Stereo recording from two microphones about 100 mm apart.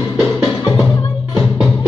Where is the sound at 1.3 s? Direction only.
10° right (ahead or behind).